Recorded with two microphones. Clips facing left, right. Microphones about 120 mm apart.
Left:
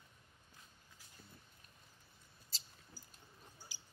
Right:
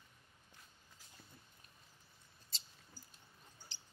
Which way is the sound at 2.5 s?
Centre (ahead or behind).